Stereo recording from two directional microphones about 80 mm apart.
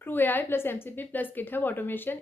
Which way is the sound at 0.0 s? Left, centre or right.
Left.